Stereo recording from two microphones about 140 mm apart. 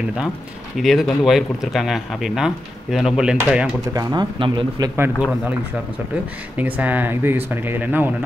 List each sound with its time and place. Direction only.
0.7 s speech: centre (ahead or behind)
3.9 s speech: 30° right (ahead or behind)
6.5 s speech: 10° right (ahead or behind)